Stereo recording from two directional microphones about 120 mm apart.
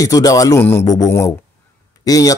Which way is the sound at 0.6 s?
20° left (ahead or behind).